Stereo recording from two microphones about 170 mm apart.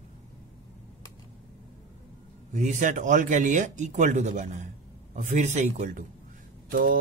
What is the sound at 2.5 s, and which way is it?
Speech, 45° right (ahead or behind).